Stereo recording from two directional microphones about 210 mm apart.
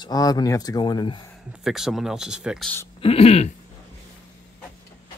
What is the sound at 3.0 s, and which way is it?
Speech, 30° left (ahead or behind).